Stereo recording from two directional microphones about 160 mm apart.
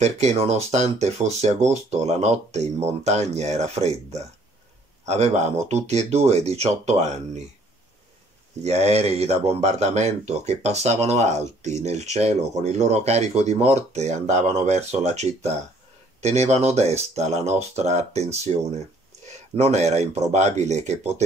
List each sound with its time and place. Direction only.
0.0 s speech: 45° right (ahead or behind)
8.6 s speech: 40° right (ahead or behind)